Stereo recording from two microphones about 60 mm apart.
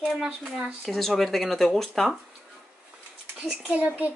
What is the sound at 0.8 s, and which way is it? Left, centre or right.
Speech, centre.